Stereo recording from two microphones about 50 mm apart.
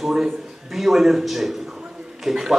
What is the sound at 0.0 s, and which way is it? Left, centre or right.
A man's voice, centre.